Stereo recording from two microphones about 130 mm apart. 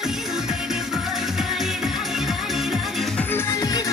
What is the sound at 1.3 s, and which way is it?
Music, 5° right (ahead or behind).